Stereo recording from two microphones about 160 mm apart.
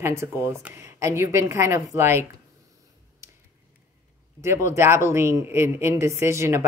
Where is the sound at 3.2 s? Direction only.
15° right (ahead or behind).